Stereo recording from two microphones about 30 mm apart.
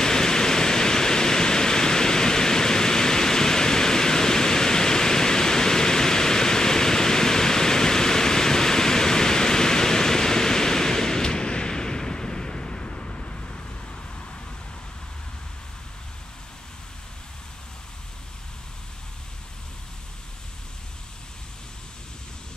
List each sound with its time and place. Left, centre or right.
0.0 s pink noise: left